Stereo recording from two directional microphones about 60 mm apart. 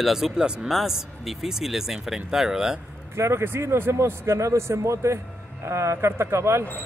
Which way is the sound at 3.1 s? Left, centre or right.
Right.